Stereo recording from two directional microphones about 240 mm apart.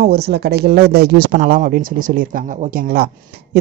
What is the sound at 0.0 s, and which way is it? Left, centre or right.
A man's voice, right.